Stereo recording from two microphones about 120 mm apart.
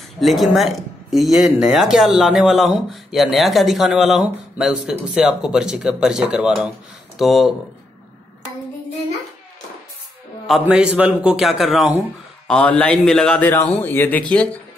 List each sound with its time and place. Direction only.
0.2 s speech: centre (ahead or behind)
10.4 s speech: 5° right (ahead or behind)
12.4 s a man's voice: 10° left (ahead or behind)